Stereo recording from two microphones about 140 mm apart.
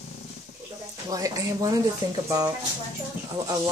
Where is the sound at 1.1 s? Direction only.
25° right (ahead or behind).